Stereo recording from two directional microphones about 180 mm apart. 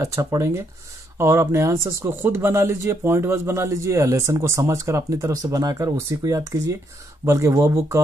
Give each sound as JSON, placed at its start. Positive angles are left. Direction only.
{"t": 0.0, "sound": "speech", "side_deg": -15}